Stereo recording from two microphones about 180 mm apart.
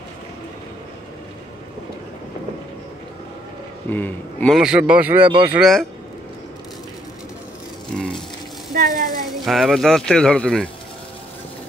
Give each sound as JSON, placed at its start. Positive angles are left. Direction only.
{"t": 3.9, "sound": "a man's voice", "side_deg": 10}
{"t": 4.6, "sound": "speech", "side_deg": -5}
{"t": 7.9, "sound": "a sound", "side_deg": 0}
{"t": 8.7, "sound": "a woman's voice", "side_deg": -50}
{"t": 9.3, "sound": "speech", "side_deg": 0}